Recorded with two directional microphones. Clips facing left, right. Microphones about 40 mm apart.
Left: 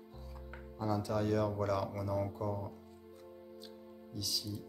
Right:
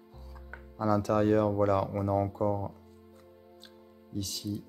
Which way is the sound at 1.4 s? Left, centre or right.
Right.